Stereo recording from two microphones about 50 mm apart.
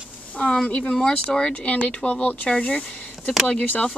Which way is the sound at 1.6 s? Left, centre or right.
Left.